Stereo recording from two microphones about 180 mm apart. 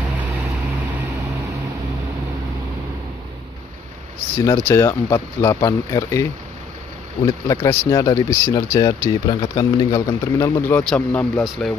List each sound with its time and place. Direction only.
4.5 s speech: 15° left (ahead or behind)
7.2 s speech: 20° left (ahead or behind); by 11.7 s centre (ahead or behind)